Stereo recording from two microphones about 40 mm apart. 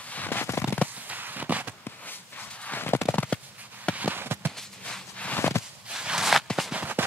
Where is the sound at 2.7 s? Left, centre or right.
Left.